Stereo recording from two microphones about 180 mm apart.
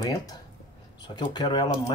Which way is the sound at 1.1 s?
25° left (ahead or behind).